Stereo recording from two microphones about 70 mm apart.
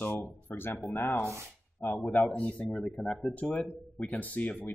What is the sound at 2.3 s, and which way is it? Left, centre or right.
Speech, left.